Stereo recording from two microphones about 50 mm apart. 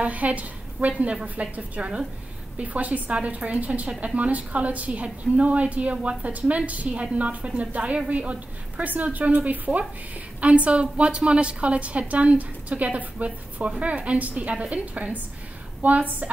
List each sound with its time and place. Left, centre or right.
0.0 s a woman's voice: right